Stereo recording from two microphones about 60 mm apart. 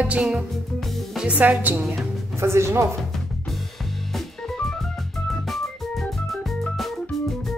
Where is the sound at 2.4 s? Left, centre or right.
Right.